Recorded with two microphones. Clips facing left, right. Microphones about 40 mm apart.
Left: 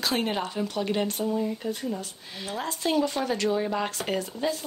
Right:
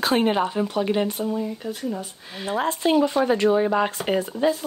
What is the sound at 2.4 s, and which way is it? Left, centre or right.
Speech, right.